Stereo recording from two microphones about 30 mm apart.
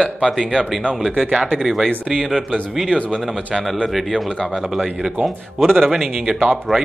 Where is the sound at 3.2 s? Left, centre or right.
Centre.